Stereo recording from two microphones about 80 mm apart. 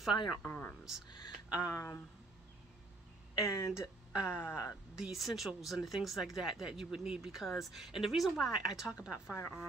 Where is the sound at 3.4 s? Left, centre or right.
Left.